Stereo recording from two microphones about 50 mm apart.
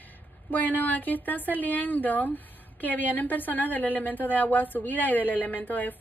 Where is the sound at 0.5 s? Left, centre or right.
Left.